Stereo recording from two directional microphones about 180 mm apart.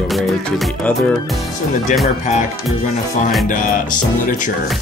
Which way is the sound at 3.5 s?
45° left (ahead or behind).